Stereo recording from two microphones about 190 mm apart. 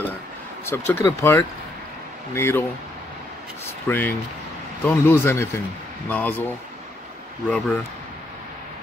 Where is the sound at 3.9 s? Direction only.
10° left (ahead or behind).